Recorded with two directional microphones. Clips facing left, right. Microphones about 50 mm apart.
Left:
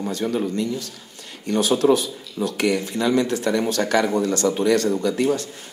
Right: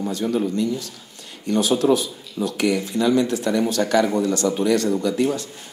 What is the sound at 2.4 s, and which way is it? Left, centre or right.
A man's voice, left.